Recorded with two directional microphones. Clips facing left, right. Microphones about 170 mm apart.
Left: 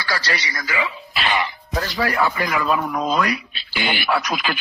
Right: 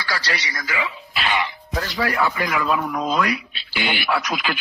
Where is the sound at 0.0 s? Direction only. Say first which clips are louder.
Left 2 dB; 40° left (ahead or behind).